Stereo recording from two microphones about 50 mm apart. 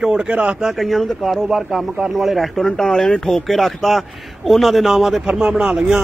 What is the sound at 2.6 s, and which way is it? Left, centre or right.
A man's voice, centre.